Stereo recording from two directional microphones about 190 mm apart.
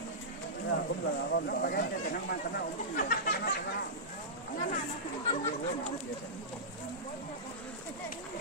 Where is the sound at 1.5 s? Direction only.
55° left (ahead or behind).